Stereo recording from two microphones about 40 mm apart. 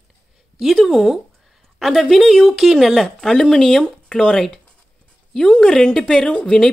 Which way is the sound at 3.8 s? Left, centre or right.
Left.